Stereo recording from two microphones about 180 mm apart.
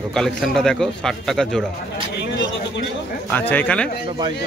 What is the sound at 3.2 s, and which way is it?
Speech, 10° left (ahead or behind).